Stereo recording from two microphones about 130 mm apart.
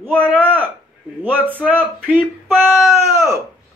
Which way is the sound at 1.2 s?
15° right (ahead or behind).